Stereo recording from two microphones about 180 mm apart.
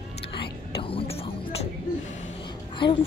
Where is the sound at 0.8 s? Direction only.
30° left (ahead or behind).